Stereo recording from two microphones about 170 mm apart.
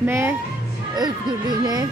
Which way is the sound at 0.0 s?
15° right (ahead or behind).